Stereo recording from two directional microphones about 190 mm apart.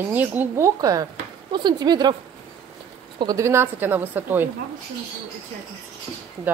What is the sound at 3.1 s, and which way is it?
Speech, 20° right (ahead or behind).